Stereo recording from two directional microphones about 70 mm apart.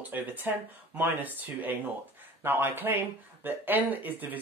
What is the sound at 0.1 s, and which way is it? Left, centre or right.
Speech, right.